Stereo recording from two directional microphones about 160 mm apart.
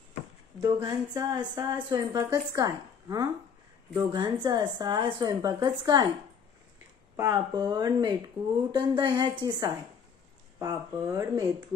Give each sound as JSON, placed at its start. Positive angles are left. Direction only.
{"t": 0.6, "sound": "a woman's voice", "side_deg": -20}
{"t": 7.2, "sound": "a woman's voice", "side_deg": -25}
{"t": 10.6, "sound": "a woman's voice", "side_deg": -20}